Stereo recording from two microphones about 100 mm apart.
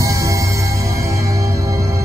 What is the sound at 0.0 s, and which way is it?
Music, 35° right (ahead or behind).